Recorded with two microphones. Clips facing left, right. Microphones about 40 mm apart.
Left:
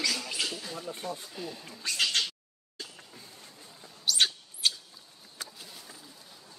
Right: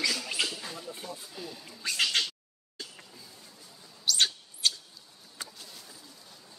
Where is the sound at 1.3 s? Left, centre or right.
Centre.